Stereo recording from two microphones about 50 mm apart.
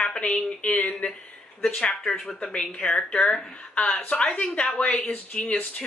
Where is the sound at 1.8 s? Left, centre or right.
Centre.